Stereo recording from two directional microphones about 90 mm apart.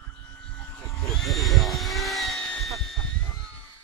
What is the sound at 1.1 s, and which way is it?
Vehicle, centre (ahead or behind).